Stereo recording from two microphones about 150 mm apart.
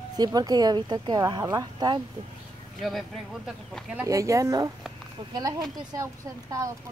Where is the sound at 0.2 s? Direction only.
25° right (ahead or behind).